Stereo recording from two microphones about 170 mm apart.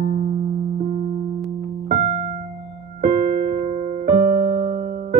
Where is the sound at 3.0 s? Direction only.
50° right (ahead or behind).